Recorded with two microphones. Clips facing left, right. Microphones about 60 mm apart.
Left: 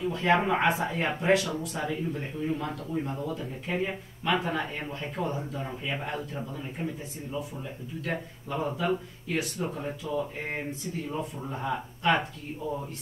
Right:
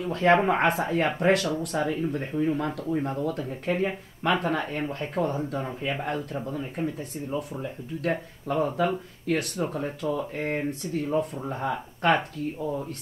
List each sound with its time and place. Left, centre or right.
0.0 s speech: right
8.1 s speech: right
9.8 s speech: right
10.7 s speech: right